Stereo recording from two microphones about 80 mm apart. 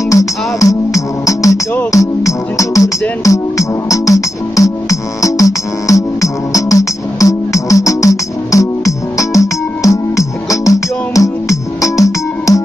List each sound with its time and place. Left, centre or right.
0.1 s music: left